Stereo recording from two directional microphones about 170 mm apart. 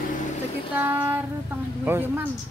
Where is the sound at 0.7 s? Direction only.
10° right (ahead or behind).